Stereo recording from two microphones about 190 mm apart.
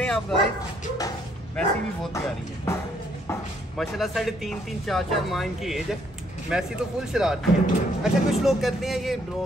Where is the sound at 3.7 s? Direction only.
Centre (ahead or behind).